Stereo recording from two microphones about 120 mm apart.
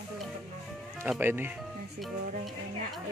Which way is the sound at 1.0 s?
15° right (ahead or behind).